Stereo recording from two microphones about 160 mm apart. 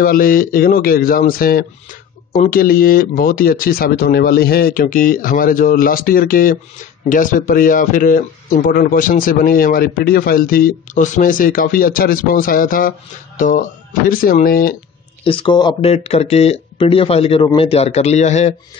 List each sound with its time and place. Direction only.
0.0 s speech: 60° left (ahead or behind)
15.2 s speech: 30° left (ahead or behind)